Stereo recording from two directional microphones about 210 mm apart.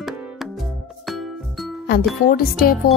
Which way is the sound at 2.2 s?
45° left (ahead or behind).